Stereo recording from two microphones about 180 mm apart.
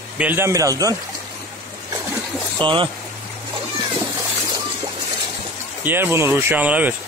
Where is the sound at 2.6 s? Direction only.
25° right (ahead or behind).